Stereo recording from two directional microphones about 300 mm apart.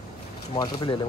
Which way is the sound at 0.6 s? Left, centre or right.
Centre.